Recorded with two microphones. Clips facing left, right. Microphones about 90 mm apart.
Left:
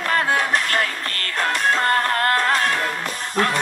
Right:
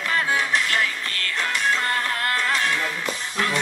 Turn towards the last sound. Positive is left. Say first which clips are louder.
# left 4 dB
turn(degrees=45)  # may be behind; listen again after turning